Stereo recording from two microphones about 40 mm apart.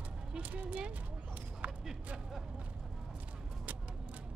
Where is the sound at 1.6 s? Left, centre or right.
Right.